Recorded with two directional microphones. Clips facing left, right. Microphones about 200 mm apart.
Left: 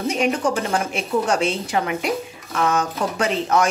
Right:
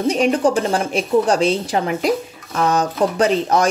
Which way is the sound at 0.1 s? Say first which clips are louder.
Right 5 dB; 35° right (ahead or behind).